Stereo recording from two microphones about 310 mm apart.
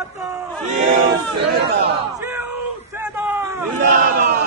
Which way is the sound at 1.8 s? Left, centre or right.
Centre.